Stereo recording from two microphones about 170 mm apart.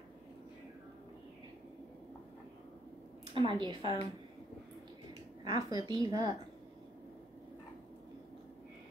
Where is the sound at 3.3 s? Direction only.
30° right (ahead or behind).